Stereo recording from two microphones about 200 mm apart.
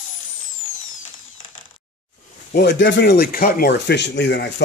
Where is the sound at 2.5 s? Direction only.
60° left (ahead or behind).